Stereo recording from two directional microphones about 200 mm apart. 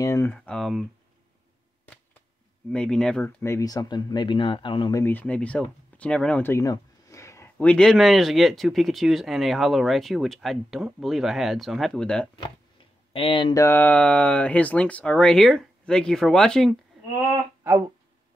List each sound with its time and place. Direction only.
0.0 s speech: 15° left (ahead or behind)
2.7 s speech: 5° left (ahead or behind); by 5.0 s 25° left (ahead or behind)
5.0 s speech: 10° left (ahead or behind)
13.1 s speech: 25° left (ahead or behind); by 16.7 s 5° left (ahead or behind)